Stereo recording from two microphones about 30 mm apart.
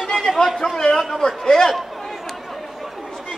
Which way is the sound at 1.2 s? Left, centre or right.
Centre.